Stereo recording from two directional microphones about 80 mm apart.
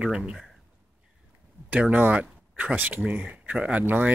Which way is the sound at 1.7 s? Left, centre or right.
Centre.